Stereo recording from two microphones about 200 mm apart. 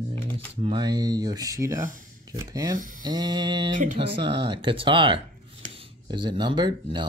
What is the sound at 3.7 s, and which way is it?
Speech, 40° right (ahead or behind).